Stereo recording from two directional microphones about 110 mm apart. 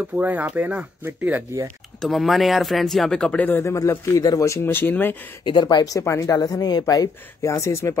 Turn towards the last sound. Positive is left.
turn(degrees=25)  # may be behind; listen again after turning